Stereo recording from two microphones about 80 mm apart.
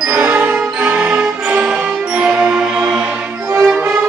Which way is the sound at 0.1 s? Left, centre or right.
Right.